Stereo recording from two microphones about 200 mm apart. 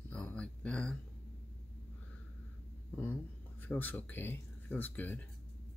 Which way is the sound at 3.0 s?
10° left (ahead or behind).